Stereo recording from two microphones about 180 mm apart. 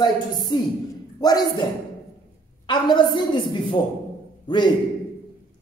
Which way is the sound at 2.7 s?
25° left (ahead or behind).